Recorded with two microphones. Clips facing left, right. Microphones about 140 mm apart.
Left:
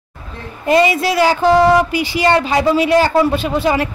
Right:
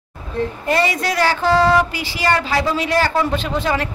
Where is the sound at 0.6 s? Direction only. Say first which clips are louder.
Left 8 dB; 15° left (ahead or behind).